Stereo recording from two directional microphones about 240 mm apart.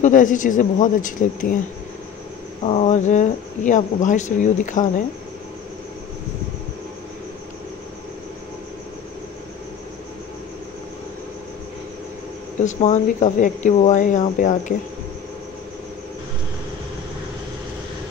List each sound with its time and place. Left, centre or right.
0.0 s speech: left
2.6 s speech: left
12.6 s speech: left